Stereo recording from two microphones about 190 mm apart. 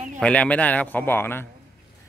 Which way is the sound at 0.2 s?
5° left (ahead or behind).